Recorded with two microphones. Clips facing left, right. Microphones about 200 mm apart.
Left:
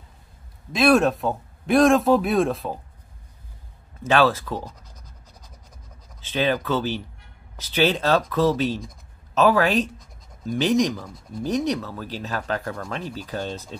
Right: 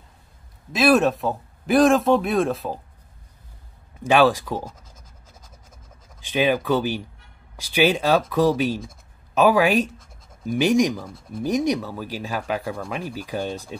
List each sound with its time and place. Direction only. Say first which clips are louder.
0.7 s speech: even; centre (ahead or behind)
4.0 s speech: right 2 dB; 15° right (ahead or behind)
6.2 s speech: right 2 dB; 15° right (ahead or behind)